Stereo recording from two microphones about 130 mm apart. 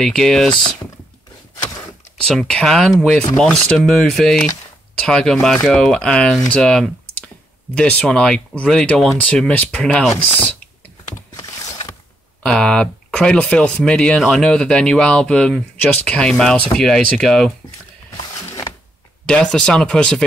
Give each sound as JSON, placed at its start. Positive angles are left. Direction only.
{"t": 0.0, "sound": "speech", "side_deg": 5}
{"t": 2.2, "sound": "speech", "side_deg": 5}
{"t": 12.4, "sound": "speech", "side_deg": 5}
{"t": 19.2, "sound": "speech", "side_deg": 5}